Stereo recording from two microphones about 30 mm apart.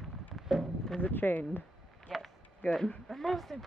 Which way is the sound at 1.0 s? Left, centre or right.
Left.